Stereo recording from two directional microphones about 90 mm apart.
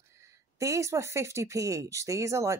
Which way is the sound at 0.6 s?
35° right (ahead or behind).